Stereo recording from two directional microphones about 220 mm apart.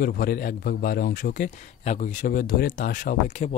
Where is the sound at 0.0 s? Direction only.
40° left (ahead or behind).